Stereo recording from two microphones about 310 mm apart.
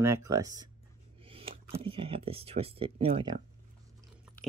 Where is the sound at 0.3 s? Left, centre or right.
Centre.